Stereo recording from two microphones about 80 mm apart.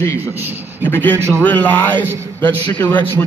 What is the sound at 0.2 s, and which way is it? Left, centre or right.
Speech, right.